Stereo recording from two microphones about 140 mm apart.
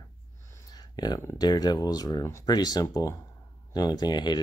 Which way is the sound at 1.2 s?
30° left (ahead or behind).